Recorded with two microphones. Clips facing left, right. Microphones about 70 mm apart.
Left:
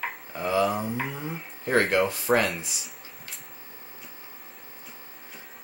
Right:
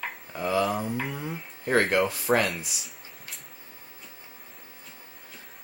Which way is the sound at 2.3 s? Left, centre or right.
Centre.